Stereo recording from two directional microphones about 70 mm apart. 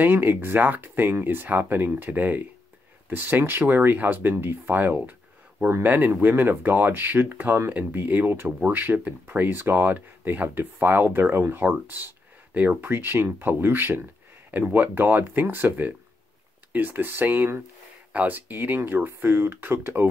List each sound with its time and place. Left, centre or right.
0.0 s speech: right